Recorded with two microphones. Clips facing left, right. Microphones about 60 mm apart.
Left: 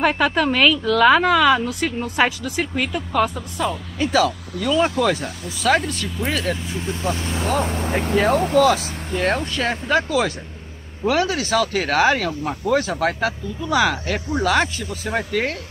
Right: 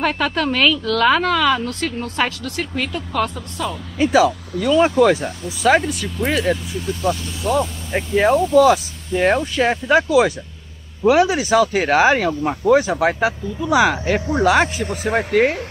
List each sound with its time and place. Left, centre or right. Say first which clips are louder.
0.0 s a woman's voice: left 1 dB; centre
4.0 s speech: right 4 dB; centre
6.7 s speech: right 3 dB; left
8.3 s speech: right 4 dB; left
8.6 s speech: right 3 dB; centre